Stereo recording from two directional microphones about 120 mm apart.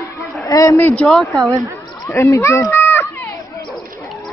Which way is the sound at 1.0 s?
Centre (ahead or behind).